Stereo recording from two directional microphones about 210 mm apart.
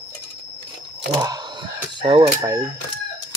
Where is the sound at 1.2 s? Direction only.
20° right (ahead or behind).